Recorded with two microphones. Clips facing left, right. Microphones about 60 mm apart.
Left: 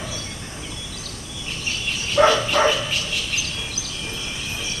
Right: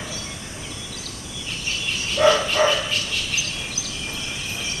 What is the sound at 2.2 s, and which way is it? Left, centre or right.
Dog, left.